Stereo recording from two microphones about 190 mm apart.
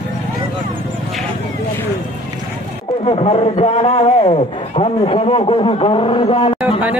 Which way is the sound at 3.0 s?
30° left (ahead or behind).